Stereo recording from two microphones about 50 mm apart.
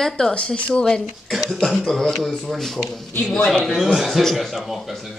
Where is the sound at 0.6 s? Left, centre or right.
Centre.